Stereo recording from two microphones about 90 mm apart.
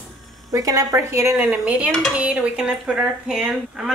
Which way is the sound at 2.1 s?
15° right (ahead or behind).